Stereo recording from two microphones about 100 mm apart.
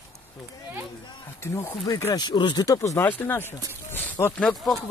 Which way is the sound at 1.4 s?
30° left (ahead or behind).